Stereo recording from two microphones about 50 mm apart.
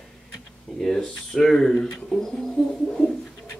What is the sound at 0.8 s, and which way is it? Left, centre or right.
A man's voice, centre.